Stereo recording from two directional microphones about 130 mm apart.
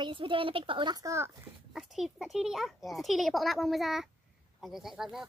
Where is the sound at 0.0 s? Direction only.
40° right (ahead or behind); by 1.3 s 25° right (ahead or behind).